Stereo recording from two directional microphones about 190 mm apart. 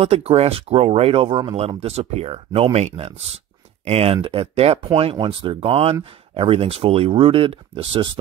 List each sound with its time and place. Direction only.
0.0 s speech: 30° right (ahead or behind)